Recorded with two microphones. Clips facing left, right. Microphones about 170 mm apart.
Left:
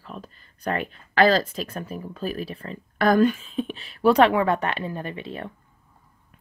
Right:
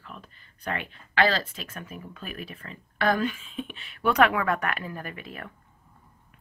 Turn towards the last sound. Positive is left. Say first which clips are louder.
# left 6 dB
turn(degrees=30)  # may be behind; listen again after turning